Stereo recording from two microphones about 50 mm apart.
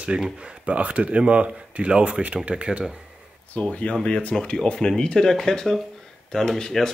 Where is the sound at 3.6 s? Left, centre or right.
Left.